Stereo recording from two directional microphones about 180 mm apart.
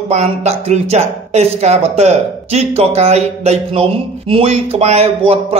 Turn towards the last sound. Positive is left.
turn(degrees=-30)  # may be behind; listen again after turning